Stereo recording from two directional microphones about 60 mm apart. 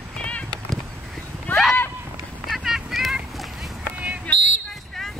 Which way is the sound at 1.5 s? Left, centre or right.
Left.